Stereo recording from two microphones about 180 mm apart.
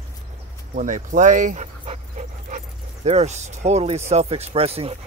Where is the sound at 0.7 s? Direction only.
45° right (ahead or behind).